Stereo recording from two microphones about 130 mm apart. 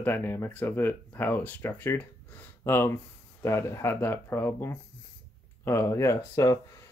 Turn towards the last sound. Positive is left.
turn(degrees=25)  # may be behind; listen again after turning